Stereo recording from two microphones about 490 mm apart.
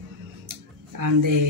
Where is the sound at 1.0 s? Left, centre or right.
Right.